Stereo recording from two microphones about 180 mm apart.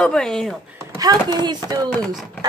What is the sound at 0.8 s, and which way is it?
Speech, 20° right (ahead or behind).